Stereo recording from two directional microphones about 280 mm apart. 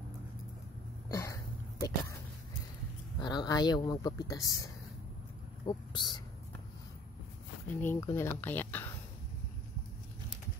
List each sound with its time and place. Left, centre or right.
1.0 s a sound: centre
3.2 s speech: centre
5.7 s speech: centre
7.8 s speech: centre